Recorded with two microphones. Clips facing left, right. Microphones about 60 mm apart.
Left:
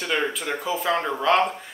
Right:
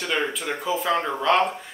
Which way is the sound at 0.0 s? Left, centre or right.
Centre.